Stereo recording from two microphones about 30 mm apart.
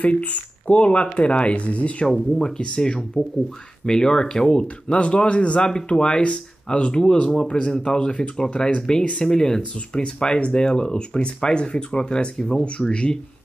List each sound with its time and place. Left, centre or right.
0.0 s speech: left
2.3 s speech: centre
2.6 s speech: left
6.9 s speech: left
9.2 s speech: left